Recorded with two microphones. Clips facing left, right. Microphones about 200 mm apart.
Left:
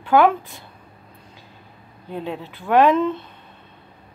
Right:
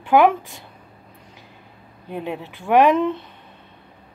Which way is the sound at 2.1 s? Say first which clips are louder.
Right 1 dB; 15° right (ahead or behind).